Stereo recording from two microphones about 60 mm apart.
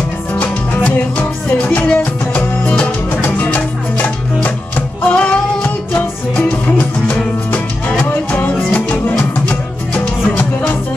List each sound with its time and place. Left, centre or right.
0.3 s music: left
6.4 s music: left
8.1 s music: left